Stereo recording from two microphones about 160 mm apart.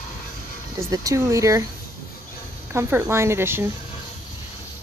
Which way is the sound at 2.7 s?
15° right (ahead or behind).